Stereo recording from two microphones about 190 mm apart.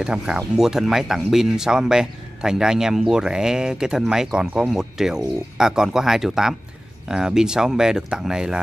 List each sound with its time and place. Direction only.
0.0 s speech: 5° right (ahead or behind)